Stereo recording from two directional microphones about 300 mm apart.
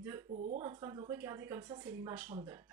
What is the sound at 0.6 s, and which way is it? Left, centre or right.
Speech, centre.